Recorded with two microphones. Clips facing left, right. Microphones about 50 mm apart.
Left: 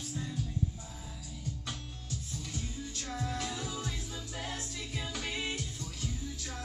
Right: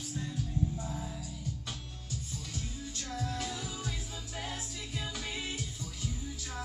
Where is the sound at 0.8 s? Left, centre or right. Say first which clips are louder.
Right 8 dB; right.